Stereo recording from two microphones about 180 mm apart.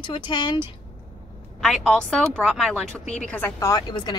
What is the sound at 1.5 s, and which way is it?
A woman's voice, centre (ahead or behind).